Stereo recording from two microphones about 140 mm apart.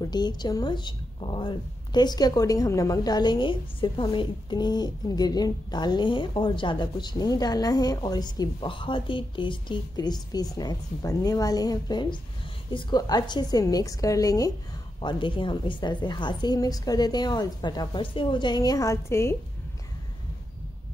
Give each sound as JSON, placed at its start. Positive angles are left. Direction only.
{"t": 0.0, "sound": "a woman's voice", "side_deg": 30}
{"t": 15.0, "sound": "a woman's voice", "side_deg": 35}